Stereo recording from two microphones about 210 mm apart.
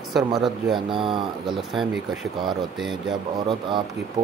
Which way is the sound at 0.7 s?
25° right (ahead or behind).